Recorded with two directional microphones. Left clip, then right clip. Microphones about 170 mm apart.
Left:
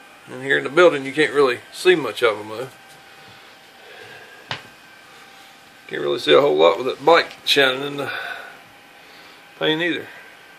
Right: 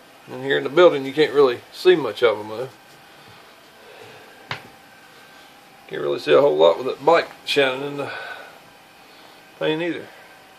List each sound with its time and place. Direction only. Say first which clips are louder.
0.3 s speech: left 1 dB; 10° right (ahead or behind)
5.9 s speech: left 2 dB; 20° left (ahead or behind)
9.6 s speech: left 2 dB; 30° left (ahead or behind)